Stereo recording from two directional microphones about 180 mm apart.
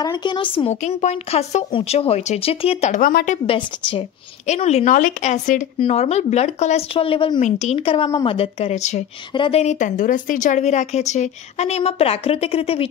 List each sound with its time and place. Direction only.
0.0 s speech: 25° left (ahead or behind)
3.0 s a woman's voice: 50° left (ahead or behind)
3.4 s speech: 30° left (ahead or behind)
7.3 s speech: 40° left (ahead or behind)